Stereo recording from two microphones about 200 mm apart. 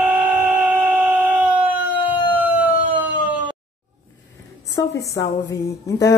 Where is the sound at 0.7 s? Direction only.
10° right (ahead or behind).